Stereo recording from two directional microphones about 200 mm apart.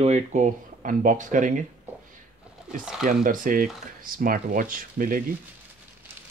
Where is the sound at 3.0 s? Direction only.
40° right (ahead or behind).